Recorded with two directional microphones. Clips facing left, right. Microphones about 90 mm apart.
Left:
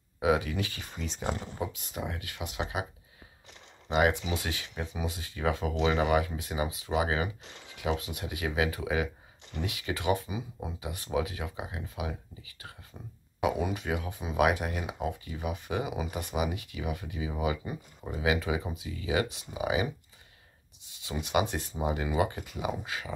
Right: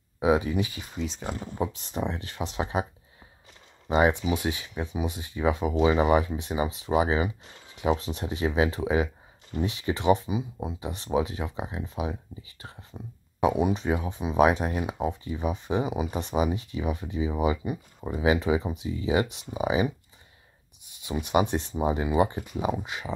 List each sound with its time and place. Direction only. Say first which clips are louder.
0.2 s speech: right 4 dB; 25° right (ahead or behind)
0.9 s speech: right 1 dB; centre (ahead or behind)
1.6 s speech: right 6 dB; 30° right (ahead or behind)
3.9 s speech: right 4 dB; 25° right (ahead or behind)
17.6 s speech: right 6 dB; 15° right (ahead or behind)
18.2 s speech: right 5 dB; 30° right (ahead or behind)
21.0 s speech: right 4 dB; 20° right (ahead or behind)